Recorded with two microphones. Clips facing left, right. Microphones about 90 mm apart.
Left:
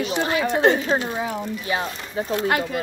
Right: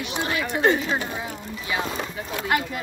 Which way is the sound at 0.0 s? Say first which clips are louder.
Left 5 dB; 35° left (ahead or behind).